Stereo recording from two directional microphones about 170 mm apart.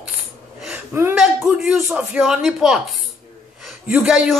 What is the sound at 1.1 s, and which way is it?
A woman's voice, 5° right (ahead or behind).